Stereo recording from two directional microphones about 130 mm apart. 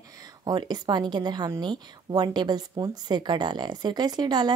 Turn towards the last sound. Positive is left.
turn(degrees=-35)  # may be behind; listen again after turning